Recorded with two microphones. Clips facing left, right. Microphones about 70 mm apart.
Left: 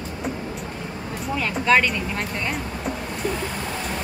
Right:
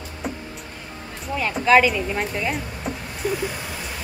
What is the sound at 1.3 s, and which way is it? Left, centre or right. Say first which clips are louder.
Speech: right 3 dB; centre.